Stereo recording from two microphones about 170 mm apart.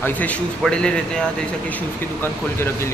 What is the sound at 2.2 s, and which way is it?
Speech, 15° left (ahead or behind).